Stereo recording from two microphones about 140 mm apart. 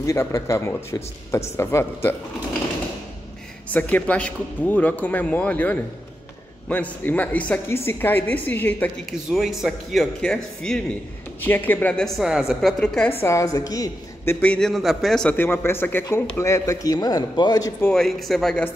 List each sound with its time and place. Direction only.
0.0 s a man's voice: 20° left (ahead or behind)
3.6 s a woman's voice: 10° left (ahead or behind)
9.3 s speech: centre (ahead or behind)
12.8 s a woman's voice: 5° left (ahead or behind)
13.2 s a woman's voice: 20° left (ahead or behind); by 15.3 s centre (ahead or behind)
15.3 s a man's voice: 15° left (ahead or behind)
17.8 s speech: 5° left (ahead or behind)